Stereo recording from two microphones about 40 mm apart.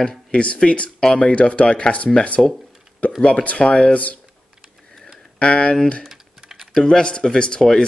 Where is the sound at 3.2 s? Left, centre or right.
Left.